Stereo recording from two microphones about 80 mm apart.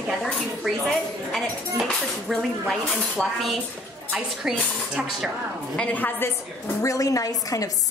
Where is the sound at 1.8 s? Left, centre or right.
Centre.